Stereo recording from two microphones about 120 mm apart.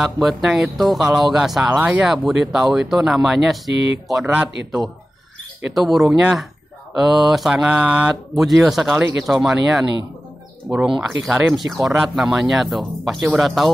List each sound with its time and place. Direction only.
0.0 s speech: centre (ahead or behind)
1.8 s a man's voice: 15° right (ahead or behind)
10.7 s speech: 25° right (ahead or behind)
11.0 s speech: 5° right (ahead or behind)